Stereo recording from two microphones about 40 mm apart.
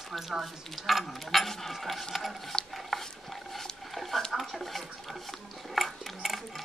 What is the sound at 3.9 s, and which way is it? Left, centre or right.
Speech, centre.